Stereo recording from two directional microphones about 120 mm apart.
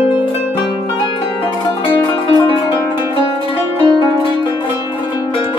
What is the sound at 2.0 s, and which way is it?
Music, 40° left (ahead or behind).